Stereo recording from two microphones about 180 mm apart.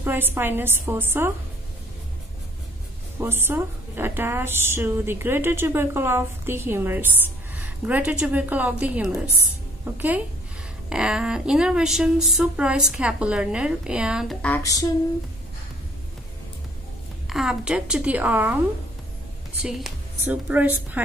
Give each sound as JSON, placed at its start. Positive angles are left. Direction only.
{"t": 0.0, "sound": "a woman's voice", "side_deg": -10}
{"t": 3.2, "sound": "a woman's voice", "side_deg": -10}
{"t": 14.6, "sound": "a sound", "side_deg": 20}
{"t": 17.3, "sound": "speech", "side_deg": 0}
{"t": 19.6, "sound": "a woman's voice", "side_deg": -5}